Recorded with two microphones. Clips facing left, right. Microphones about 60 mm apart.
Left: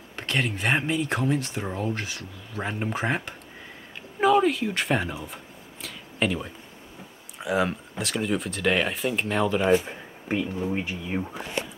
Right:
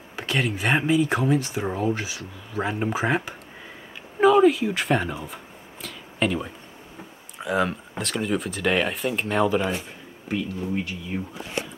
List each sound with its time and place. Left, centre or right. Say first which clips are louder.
0.1 s speech: right 2 dB; centre
4.2 s a sound: right 4 dB; centre
7.3 s speech: right 1 dB; centre
10.2 s speech: left 1 dB; left